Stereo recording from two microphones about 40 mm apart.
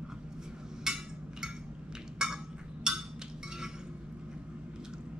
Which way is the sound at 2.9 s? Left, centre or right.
Centre.